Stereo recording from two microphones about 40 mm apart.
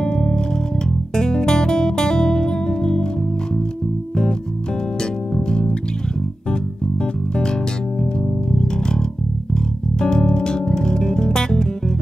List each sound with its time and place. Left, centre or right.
0.0 s music: centre
5.3 s music: centre
8.5 s music: centre
9.9 s music: centre